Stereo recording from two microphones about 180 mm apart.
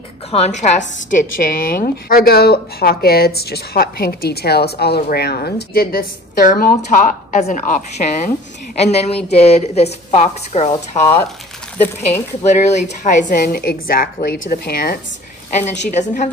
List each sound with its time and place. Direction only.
0.3 s a woman's voice: 40° left (ahead or behind)
12.5 s a woman's voice: 40° left (ahead or behind); by 15.0 s 55° left (ahead or behind)
15.9 s a woman's voice: 40° left (ahead or behind)